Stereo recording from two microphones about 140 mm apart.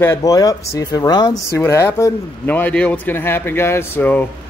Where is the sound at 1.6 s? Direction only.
15° left (ahead or behind).